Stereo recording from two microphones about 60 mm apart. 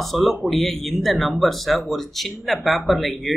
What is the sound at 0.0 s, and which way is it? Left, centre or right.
Speech, centre.